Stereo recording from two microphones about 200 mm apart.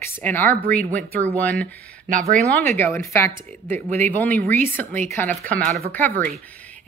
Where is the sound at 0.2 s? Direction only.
10° left (ahead or behind).